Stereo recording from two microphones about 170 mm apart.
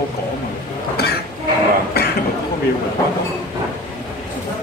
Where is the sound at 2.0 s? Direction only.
65° left (ahead or behind).